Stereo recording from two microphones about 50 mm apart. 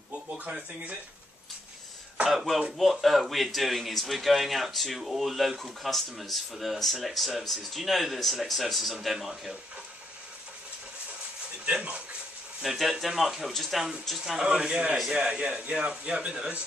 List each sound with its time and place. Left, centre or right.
0.5 s speech: centre
2.2 s a man's voice: centre
11.6 s speech: right
12.6 s a man's voice: centre
14.4 s speech: right